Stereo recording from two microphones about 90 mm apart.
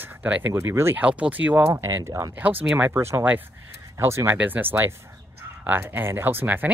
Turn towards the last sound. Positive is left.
turn(degrees=-20)  # may be behind; listen again after turning